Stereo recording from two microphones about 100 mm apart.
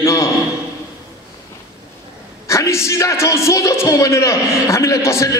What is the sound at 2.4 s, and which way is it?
Music, 30° left (ahead or behind).